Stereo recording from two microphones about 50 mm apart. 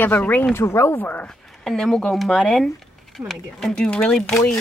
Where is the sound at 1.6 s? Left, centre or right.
Centre.